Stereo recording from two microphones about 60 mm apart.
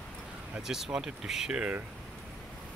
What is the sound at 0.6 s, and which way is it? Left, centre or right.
Speech, centre.